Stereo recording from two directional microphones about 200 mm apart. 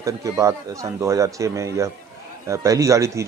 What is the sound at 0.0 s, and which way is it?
Speech, 15° right (ahead or behind).